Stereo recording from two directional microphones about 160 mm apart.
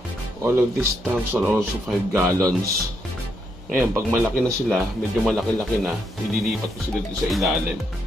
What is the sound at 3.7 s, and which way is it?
Speech, 15° right (ahead or behind).